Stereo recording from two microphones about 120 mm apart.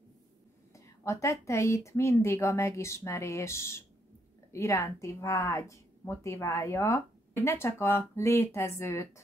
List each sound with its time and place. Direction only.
0.7 s a woman's voice: 25° left (ahead or behind)